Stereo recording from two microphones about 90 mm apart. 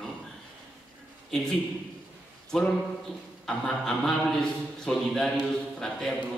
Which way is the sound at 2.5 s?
5° left (ahead or behind).